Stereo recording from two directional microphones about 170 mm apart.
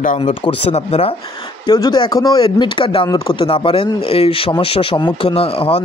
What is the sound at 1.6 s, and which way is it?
Speech, 25° left (ahead or behind).